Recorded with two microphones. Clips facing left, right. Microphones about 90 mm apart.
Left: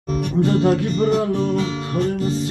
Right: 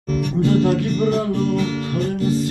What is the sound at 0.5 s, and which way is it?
Music, 25° left (ahead or behind).